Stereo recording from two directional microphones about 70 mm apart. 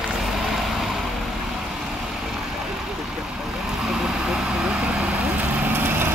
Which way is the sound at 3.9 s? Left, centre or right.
Centre.